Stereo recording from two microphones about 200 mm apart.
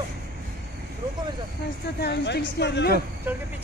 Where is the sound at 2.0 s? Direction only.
55° left (ahead or behind).